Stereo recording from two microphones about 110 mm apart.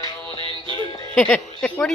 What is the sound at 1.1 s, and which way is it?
Speech, 10° left (ahead or behind).